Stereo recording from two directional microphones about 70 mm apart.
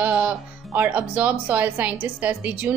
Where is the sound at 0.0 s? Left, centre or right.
Right.